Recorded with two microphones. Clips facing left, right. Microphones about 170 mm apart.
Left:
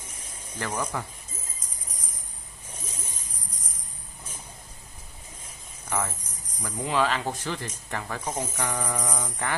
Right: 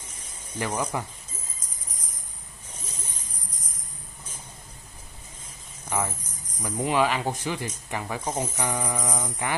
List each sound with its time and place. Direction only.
0.6 s speech: 10° right (ahead or behind)
2.7 s jingle bell: 10° left (ahead or behind)
5.9 s speech: 10° right (ahead or behind)